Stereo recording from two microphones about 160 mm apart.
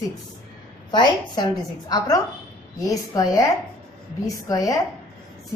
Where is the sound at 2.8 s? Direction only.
20° left (ahead or behind).